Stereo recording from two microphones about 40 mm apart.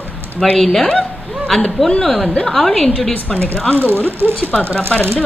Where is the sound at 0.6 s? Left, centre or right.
Centre.